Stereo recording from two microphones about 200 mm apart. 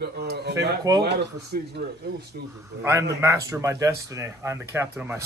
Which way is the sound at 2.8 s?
10° right (ahead or behind).